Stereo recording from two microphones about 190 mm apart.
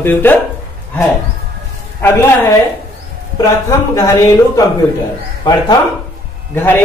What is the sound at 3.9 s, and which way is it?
Speech, 20° left (ahead or behind).